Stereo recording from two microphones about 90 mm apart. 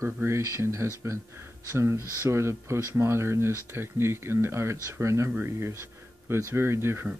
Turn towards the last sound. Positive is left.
turn(degrees=-30)  # may be behind; listen again after turning